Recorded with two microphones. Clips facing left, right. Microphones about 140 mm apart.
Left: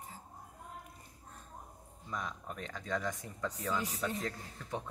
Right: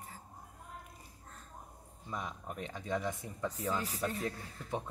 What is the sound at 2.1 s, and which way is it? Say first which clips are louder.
Speech: even; 15° right (ahead or behind).